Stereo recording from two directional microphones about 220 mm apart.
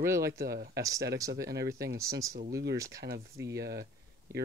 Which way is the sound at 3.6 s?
45° right (ahead or behind).